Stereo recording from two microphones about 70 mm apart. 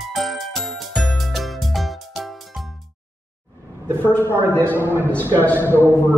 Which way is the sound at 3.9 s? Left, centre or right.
Right.